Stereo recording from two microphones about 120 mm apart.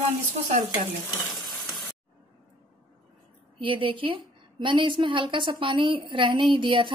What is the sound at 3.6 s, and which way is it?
A woman's voice, 45° right (ahead or behind).